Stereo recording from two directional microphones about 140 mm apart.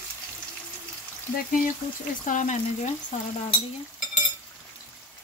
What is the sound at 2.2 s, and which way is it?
Speech, 60° left (ahead or behind).